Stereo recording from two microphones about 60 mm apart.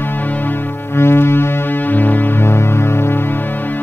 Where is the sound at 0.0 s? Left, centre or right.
Left.